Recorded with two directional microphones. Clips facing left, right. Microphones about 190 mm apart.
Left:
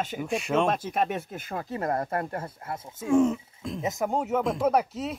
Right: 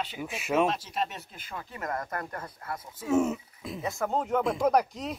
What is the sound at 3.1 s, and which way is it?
Speech, 5° right (ahead or behind).